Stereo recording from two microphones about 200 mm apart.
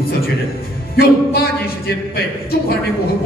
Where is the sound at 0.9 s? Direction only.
50° left (ahead or behind).